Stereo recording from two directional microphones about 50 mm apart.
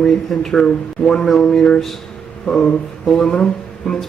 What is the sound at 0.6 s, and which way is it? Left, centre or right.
Speech, left.